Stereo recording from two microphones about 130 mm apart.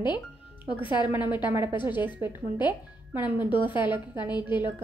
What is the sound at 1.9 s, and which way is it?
Speech, 15° right (ahead or behind).